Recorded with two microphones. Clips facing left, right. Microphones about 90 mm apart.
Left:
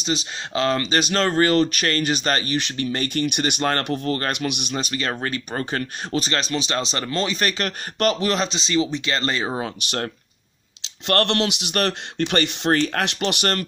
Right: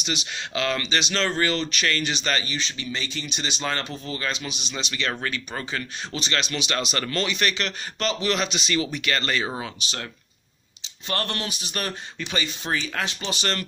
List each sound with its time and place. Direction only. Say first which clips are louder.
0.0 s speech: left 4 dB; 35° left (ahead or behind)
9.8 s speech: left 6 dB; 55° left (ahead or behind)
10.8 s speech: left 8 dB; 80° left; by 13.6 s 60° left (ahead or behind)